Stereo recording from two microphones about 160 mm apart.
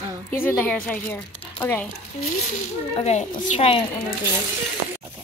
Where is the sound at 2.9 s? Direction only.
45° left (ahead or behind).